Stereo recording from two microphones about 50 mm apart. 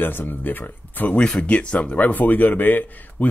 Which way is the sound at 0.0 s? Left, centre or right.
Left.